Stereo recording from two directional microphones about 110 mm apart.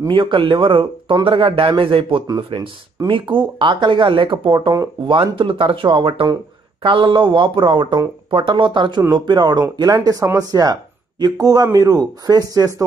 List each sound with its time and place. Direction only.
0.1 s speech: 50° right (ahead or behind)
2.2 s speech: 35° right (ahead or behind)
3.1 s speech: 50° right (ahead or behind)
4.6 s speech: 35° right (ahead or behind)
5.0 s speech: 50° right (ahead or behind); by 12.8 s 35° right (ahead or behind)